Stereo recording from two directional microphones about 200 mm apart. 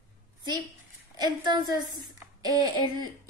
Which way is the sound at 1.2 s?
20° right (ahead or behind).